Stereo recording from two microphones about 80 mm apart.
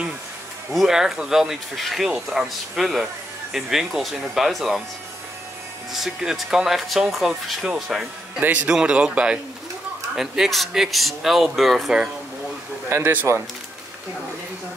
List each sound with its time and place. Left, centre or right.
0.7 s speech: centre
5.9 s speech: centre
8.4 s speech: right; by 12.0 s centre
12.9 s speech: right